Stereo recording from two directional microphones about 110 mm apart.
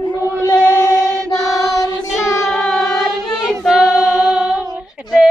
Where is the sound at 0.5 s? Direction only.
10° left (ahead or behind).